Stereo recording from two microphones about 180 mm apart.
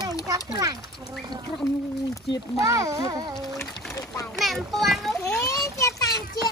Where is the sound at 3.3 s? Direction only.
Centre (ahead or behind).